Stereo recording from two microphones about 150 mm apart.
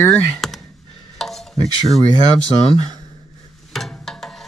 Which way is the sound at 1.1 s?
Centre (ahead or behind).